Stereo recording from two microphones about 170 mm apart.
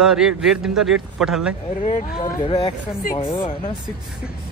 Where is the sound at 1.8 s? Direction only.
30° left (ahead or behind).